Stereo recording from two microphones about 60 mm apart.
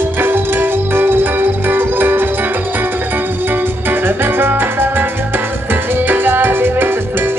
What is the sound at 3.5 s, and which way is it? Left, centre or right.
Music, right.